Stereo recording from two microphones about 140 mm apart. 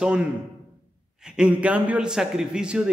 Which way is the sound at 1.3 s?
10° right (ahead or behind).